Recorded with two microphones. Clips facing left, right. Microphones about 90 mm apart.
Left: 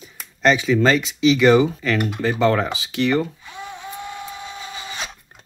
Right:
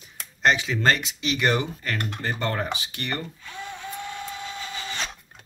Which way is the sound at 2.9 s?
90° left.